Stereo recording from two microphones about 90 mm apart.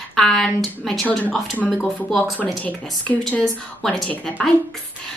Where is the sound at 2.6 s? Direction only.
20° left (ahead or behind).